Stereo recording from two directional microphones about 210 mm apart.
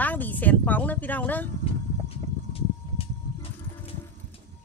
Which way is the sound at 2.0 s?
25° left (ahead or behind).